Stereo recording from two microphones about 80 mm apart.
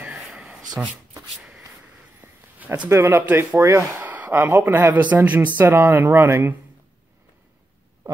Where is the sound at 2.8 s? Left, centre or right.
Right.